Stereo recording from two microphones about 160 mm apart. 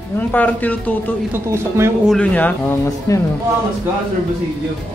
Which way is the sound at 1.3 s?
15° right (ahead or behind).